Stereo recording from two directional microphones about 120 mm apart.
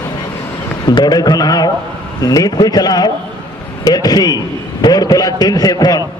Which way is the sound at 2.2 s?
30° left (ahead or behind).